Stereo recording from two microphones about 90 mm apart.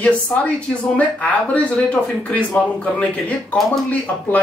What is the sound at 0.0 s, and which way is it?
Speech, 15° left (ahead or behind).